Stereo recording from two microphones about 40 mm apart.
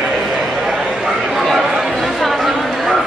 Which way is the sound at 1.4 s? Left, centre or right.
Centre.